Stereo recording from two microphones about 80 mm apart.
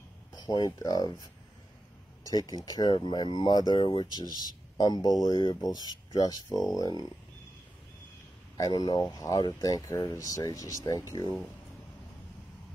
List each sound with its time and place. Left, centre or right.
0.3 s speech: left
2.2 s speech: left
4.1 s speech: right
4.4 s speech: left
8.5 s speech: left
9.1 s speech: left